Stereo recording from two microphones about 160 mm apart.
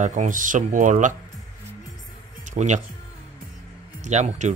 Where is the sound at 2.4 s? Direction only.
50° right (ahead or behind).